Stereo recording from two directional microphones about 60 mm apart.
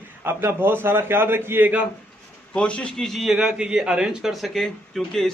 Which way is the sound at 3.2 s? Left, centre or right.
Centre.